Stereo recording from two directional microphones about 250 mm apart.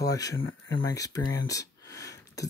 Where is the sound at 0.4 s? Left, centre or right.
Left.